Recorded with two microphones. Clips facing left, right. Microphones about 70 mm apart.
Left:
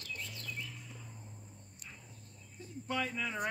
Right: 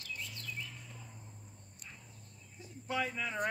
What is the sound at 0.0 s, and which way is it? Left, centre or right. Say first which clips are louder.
Bird: even; centre.